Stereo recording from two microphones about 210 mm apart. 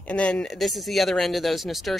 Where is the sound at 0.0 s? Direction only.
5° left (ahead or behind).